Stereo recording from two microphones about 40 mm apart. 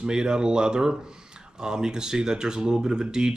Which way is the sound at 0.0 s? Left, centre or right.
Right.